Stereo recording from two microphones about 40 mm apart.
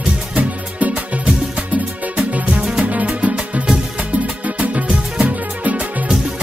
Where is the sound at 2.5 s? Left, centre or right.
Centre; by 4.8 s right.